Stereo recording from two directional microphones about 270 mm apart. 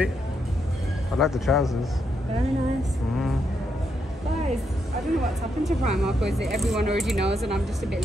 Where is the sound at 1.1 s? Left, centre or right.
Centre.